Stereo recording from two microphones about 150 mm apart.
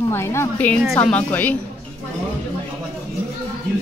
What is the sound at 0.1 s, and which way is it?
A woman's voice, 15° left (ahead or behind).